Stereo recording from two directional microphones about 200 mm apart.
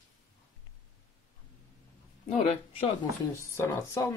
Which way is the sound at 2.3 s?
30° left (ahead or behind).